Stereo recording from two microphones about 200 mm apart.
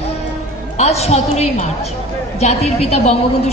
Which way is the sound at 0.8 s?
30° left (ahead or behind).